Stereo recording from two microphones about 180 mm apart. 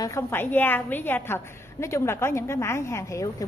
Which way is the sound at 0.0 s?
15° left (ahead or behind).